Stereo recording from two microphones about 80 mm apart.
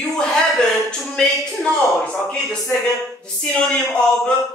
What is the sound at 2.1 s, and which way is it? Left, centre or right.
A woman's voice, centre.